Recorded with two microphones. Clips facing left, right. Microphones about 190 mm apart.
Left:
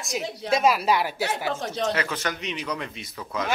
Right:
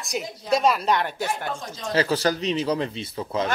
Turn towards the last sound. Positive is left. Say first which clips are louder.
# right 4 dB
turn(degrees=-30)  # may be behind; listen again after turning